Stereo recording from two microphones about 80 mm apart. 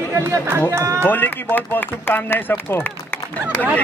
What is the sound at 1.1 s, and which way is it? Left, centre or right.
A man's voice, left.